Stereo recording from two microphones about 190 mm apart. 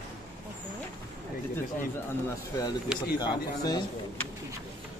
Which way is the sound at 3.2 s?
20° left (ahead or behind).